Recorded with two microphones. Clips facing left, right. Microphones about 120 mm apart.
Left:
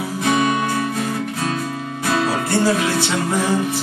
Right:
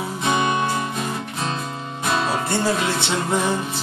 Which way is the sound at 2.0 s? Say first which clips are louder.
Left 2 dB; 25° right (ahead or behind).